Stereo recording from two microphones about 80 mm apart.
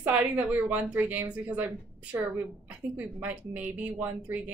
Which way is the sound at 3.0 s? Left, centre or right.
Centre.